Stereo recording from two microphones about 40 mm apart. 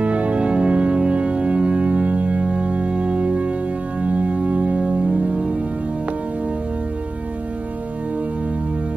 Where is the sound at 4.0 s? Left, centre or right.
Right.